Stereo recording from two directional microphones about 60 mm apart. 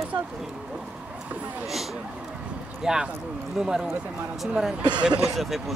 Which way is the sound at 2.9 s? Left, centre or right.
Centre.